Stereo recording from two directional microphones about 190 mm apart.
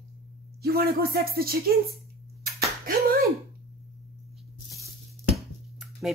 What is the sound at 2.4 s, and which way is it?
Slap, 50° right (ahead or behind).